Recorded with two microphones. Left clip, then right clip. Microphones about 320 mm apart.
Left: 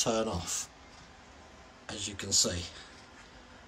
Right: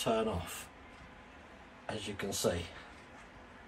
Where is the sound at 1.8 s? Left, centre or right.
Centre.